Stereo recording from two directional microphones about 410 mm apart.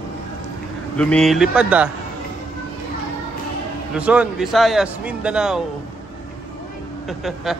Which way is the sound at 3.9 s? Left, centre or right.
Centre.